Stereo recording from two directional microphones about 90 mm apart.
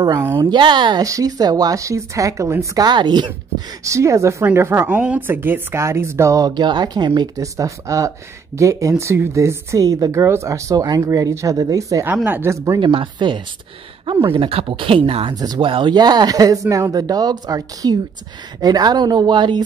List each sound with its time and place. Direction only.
0.2 s speech: 30° right (ahead or behind)
0.5 s speech: 60° right (ahead or behind)
1.0 s speech: 40° right (ahead or behind)
2.9 s speech: 55° right (ahead or behind)
3.5 s speech: 35° right (ahead or behind)
4.8 s speech: 15° right (ahead or behind); by 7.1 s 55° right (ahead or behind)
7.2 s speech: 40° right (ahead or behind)
10.2 s speech: 30° right (ahead or behind)
12.3 s speech: 25° right (ahead or behind)
12.5 s speech: 35° right (ahead or behind)
12.8 s speech: 65° right (ahead or behind)
15.3 s speech: 45° right (ahead or behind)
15.6 s speech: 70° right (ahead or behind)